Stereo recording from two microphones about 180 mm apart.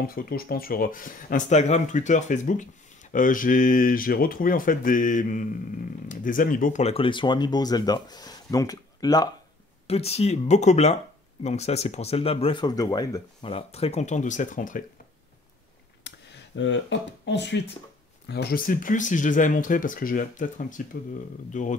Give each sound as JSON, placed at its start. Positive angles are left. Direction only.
{"t": 0.0, "sound": "speech", "side_deg": 55}
{"t": 9.8, "sound": "speech", "side_deg": 35}
{"t": 13.5, "sound": "speech", "side_deg": 35}
{"t": 16.0, "sound": "speech", "side_deg": 80}
{"t": 18.3, "sound": "speech", "side_deg": 60}